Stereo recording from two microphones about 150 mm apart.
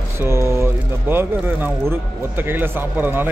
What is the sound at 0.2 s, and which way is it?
Speech, 15° right (ahead or behind).